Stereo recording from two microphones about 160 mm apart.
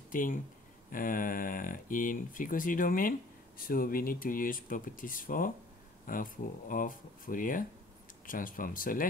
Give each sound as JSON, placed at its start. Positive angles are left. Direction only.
{"t": 0.1, "sound": "speech", "side_deg": 55}